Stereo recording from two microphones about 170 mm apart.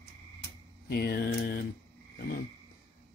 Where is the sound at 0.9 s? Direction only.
60° left (ahead or behind).